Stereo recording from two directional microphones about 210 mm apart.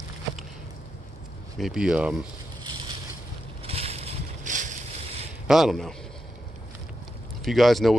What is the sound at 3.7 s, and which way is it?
Crushing, 30° right (ahead or behind).